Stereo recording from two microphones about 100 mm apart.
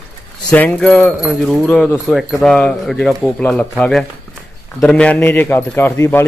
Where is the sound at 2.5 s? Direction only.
10° left (ahead or behind).